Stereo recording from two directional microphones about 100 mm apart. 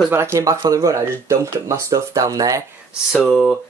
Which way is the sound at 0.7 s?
35° right (ahead or behind).